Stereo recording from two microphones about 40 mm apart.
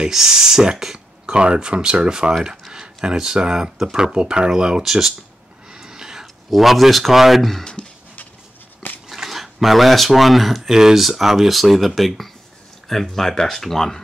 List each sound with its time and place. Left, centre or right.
0.1 s speech: centre
5.7 s a sound: centre
6.5 s speech: centre
9.1 s speech: centre
10.7 s speech: centre